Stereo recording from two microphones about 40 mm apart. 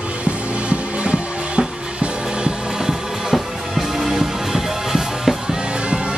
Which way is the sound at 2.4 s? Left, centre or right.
Centre.